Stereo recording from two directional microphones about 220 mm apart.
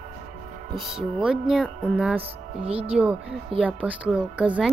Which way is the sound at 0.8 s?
5° right (ahead or behind).